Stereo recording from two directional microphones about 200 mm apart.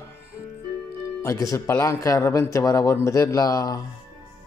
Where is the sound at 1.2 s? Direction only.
15° left (ahead or behind).